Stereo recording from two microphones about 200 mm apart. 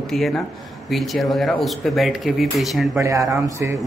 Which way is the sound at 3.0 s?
15° right (ahead or behind).